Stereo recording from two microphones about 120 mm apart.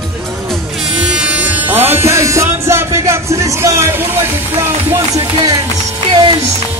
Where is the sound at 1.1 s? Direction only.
10° right (ahead or behind).